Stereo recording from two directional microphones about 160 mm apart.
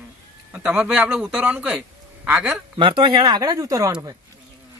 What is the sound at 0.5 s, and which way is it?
Speech, 10° right (ahead or behind).